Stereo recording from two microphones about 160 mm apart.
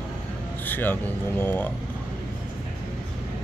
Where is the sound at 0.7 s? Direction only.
10° left (ahead or behind).